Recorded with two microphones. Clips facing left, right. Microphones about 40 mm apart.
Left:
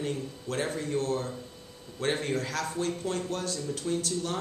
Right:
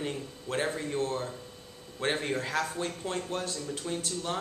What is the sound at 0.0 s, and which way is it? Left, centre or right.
Speech, centre.